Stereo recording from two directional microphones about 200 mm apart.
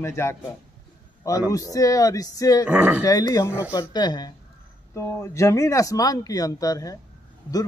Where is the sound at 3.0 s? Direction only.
15° left (ahead or behind).